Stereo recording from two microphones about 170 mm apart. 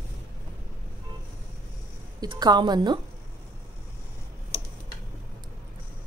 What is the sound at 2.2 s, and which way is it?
Speech, 25° right (ahead or behind).